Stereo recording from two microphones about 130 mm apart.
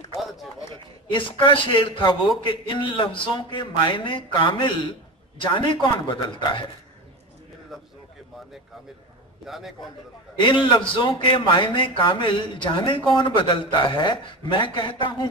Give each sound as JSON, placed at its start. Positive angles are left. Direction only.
{"t": 0.2, "sound": "run", "side_deg": 0}
{"t": 1.1, "sound": "a man's voice", "side_deg": 40}
{"t": 9.5, "sound": "a man's voice", "side_deg": 0}
{"t": 10.4, "sound": "a man's voice", "side_deg": 35}